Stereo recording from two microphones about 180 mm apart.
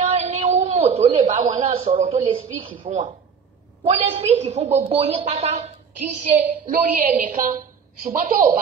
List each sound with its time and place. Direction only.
0.0 s a sound: 35° right (ahead or behind)
3.8 s a woman's voice: 35° right (ahead or behind)
6.7 s a woman's voice: 50° right (ahead or behind)